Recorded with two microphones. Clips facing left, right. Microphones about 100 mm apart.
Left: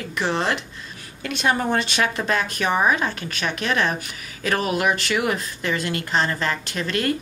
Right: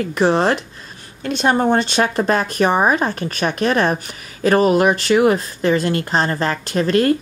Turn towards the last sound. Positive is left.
turn(degrees=-40)  # may be behind; listen again after turning